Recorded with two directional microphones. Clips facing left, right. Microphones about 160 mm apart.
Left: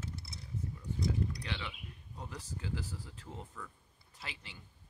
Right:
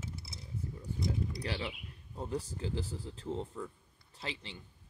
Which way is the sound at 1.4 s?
35° right (ahead or behind).